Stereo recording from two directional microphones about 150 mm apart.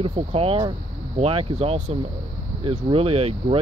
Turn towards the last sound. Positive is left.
turn(degrees=-40)  # may be behind; listen again after turning